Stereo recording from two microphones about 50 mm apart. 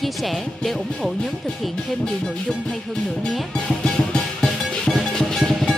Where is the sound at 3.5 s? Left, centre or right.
Centre.